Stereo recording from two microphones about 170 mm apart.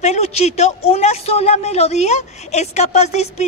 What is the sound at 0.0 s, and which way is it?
Speech, 40° left (ahead or behind).